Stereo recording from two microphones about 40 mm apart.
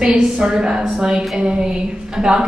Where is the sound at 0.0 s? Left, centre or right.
Centre.